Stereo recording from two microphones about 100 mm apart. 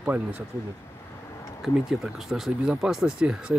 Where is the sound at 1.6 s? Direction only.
Centre (ahead or behind).